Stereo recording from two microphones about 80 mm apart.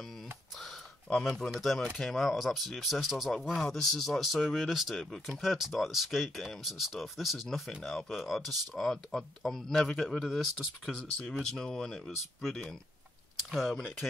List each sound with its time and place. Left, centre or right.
1.2 s speech: centre